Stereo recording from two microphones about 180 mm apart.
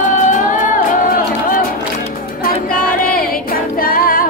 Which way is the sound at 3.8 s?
55° left (ahead or behind).